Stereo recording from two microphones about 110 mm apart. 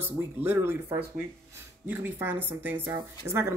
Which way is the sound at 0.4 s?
20° right (ahead or behind).